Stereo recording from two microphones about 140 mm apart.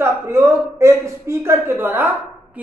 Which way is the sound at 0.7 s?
20° right (ahead or behind).